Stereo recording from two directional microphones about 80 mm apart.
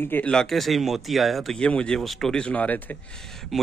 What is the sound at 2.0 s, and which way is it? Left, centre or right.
A man's voice, centre.